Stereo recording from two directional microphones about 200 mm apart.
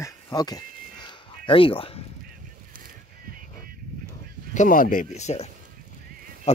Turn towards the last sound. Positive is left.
turn(degrees=35)  # may be behind; listen again after turning